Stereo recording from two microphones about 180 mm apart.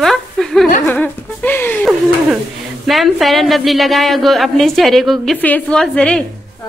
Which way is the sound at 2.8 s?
Centre (ahead or behind).